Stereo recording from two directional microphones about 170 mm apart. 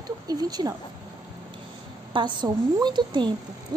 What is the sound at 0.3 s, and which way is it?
Speech, 25° right (ahead or behind).